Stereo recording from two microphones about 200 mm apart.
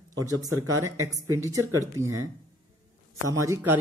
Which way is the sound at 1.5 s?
15° right (ahead or behind).